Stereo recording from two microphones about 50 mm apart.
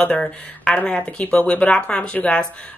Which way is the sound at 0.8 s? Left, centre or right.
Left.